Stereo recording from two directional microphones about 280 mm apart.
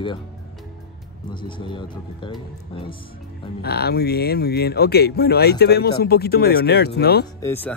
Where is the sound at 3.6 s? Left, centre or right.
Left.